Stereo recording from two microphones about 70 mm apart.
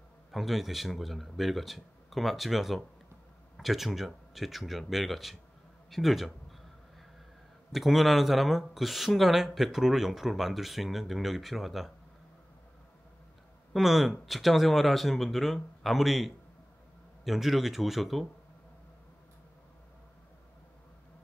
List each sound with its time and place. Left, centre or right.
0.3 s speech: centre
7.7 s speech: centre
13.7 s speech: centre